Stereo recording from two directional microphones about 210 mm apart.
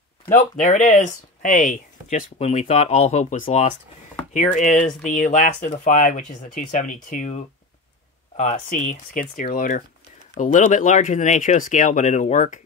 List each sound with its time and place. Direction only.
0.3 s speech: 35° left (ahead or behind)
4.8 s speech: 35° left (ahead or behind)
8.4 s speech: 35° left (ahead or behind)